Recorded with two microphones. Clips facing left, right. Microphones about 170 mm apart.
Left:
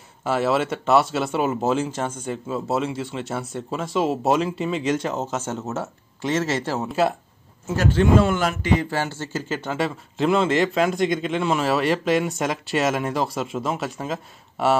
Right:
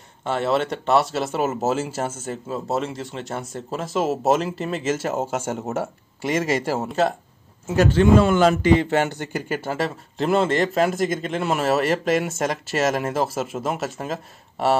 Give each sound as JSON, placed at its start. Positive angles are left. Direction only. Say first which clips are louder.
{"t": 0.2, "sound": "speech", "louder": "left 1 dB", "side_deg": 5}
{"t": 8.4, "sound": "speech", "louder": "right 6 dB", "side_deg": -25}
{"t": 9.5, "sound": "speech", "louder": "even", "side_deg": -5}